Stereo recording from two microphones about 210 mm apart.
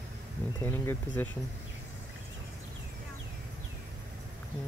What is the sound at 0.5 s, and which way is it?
Speech, 10° left (ahead or behind).